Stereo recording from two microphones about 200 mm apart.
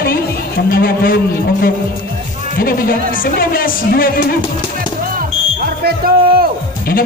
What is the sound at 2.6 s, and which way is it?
Speech, 50° left (ahead or behind).